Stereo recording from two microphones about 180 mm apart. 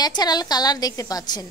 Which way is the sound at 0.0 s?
20° left (ahead or behind).